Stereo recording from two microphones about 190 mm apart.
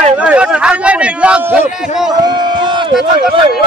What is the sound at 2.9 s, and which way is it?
Speech, centre (ahead or behind).